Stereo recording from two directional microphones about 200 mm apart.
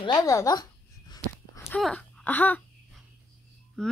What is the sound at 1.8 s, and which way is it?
Speech, centre (ahead or behind).